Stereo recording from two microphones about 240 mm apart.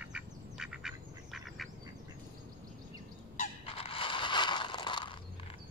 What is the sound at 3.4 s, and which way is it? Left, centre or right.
Crushing, left.